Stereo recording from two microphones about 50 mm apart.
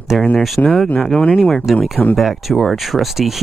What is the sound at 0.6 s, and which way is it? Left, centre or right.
Speech, left.